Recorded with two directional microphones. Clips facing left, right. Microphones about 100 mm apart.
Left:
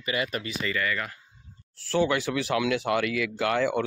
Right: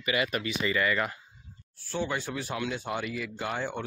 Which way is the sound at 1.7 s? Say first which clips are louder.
Left 7 dB; 90° left.